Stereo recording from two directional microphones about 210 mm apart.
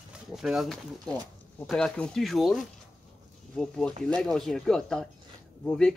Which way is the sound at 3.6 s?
5° left (ahead or behind).